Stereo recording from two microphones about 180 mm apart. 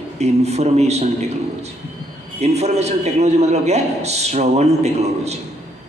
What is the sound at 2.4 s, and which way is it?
A man's voice, 35° right (ahead or behind).